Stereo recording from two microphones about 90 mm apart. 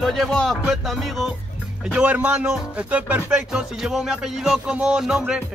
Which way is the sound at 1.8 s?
15° right (ahead or behind).